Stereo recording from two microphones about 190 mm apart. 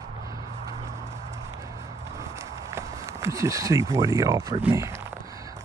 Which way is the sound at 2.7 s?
15° right (ahead or behind).